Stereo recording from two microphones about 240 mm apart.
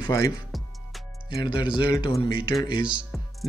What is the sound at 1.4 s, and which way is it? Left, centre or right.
Speech, centre.